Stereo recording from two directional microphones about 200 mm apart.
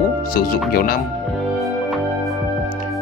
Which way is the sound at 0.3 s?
45° left (ahead or behind).